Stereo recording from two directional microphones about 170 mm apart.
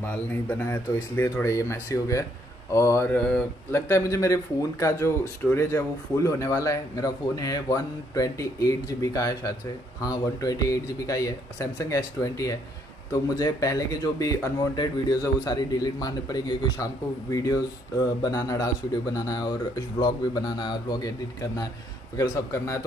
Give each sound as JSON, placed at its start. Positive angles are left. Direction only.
{"t": 0.0, "sound": "a man's voice", "side_deg": 10}